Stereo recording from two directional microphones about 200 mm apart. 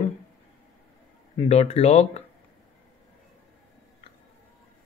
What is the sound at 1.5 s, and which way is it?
Speech, 30° left (ahead or behind).